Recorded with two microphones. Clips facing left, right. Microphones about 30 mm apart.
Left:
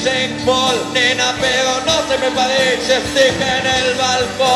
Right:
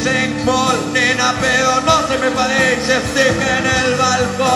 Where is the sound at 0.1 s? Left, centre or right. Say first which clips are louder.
Right 1 dB; left.